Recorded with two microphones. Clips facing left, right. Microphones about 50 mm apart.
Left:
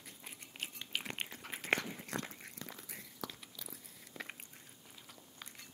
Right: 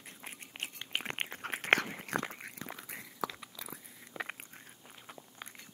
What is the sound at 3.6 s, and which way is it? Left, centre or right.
Biting, right.